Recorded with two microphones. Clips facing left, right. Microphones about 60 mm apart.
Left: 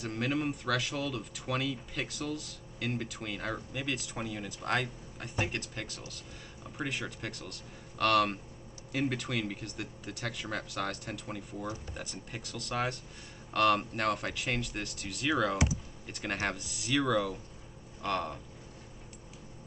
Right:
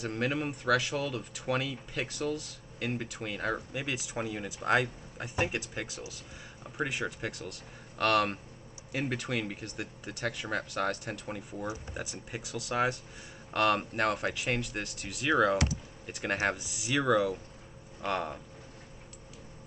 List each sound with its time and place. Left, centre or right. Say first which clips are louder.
0.0 s speech: right 1 dB; centre
15.5 s speech: right 2 dB; centre
16.1 s speech: right 4 dB; centre